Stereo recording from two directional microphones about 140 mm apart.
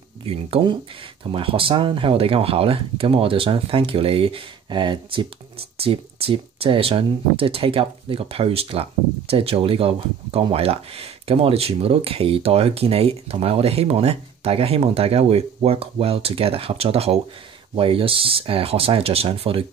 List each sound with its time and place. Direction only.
0.2 s speech: 40° right (ahead or behind)